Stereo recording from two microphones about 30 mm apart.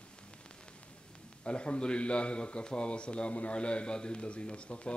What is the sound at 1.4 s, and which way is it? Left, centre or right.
A man's voice, left.